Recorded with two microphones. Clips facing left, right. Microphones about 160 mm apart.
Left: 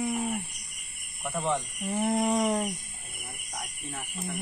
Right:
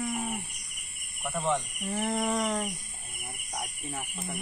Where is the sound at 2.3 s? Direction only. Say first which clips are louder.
Left 3 dB; 15° left (ahead or behind).